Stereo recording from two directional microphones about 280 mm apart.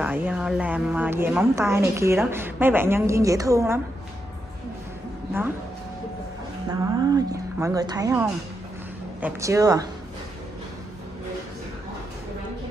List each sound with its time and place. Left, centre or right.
0.0 s speech: centre
6.7 s speech: centre